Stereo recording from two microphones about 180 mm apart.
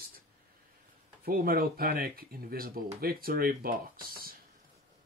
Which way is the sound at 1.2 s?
55° right (ahead or behind).